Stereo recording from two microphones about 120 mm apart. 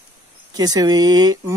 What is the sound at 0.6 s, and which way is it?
Speech, 30° right (ahead or behind).